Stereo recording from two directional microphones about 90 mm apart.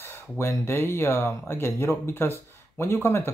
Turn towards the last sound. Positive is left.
turn(degrees=25)  # may be behind; listen again after turning